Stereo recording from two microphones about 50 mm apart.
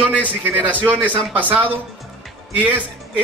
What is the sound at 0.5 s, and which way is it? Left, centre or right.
A man's voice, right.